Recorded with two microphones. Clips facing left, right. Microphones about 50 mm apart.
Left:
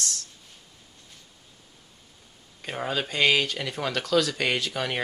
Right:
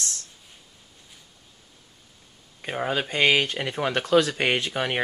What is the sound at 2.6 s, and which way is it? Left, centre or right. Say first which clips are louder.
Speech: right 3 dB; centre.